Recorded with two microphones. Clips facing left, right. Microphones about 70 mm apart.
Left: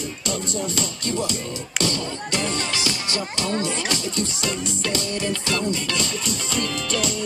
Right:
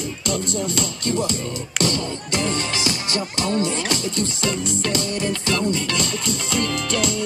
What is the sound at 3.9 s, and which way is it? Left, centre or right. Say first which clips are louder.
Music: right 2 dB; right.